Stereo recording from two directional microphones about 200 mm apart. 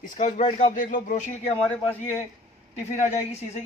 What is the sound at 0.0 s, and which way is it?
A man's voice, 40° left (ahead or behind).